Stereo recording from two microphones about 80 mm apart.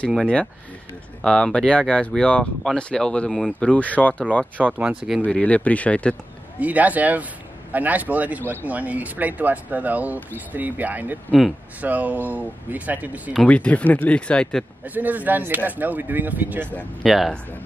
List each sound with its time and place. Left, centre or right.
0.2 s speech: centre
3.3 s speech: centre
3.5 s speech: centre
4.6 s speech: centre
5.2 s speech: centre
6.6 s speech: centre
13.5 s speech: centre
15.0 s speech: right
17.0 s speech: centre